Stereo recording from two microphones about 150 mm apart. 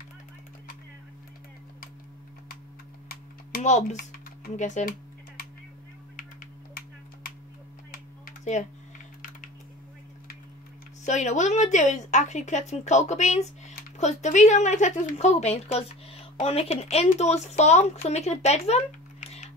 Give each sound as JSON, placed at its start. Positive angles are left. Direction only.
{"t": 3.6, "sound": "a woman's voice", "side_deg": 50}
{"t": 6.1, "sound": "typing", "side_deg": 65}
{"t": 7.9, "sound": "typing", "side_deg": 60}
{"t": 11.1, "sound": "a woman's voice", "side_deg": 50}